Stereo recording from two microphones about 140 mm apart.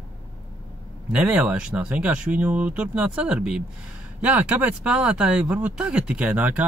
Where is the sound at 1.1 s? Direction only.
10° right (ahead or behind).